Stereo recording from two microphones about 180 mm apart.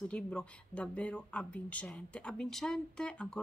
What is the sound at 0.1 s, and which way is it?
Speech, 5° left (ahead or behind).